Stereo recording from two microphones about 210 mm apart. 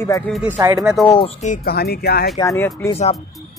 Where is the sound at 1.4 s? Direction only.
45° left (ahead or behind).